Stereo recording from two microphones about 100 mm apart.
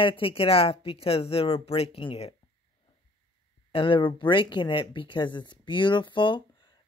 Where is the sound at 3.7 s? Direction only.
60° left (ahead or behind).